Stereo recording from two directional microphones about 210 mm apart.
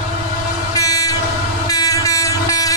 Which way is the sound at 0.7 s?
15° left (ahead or behind).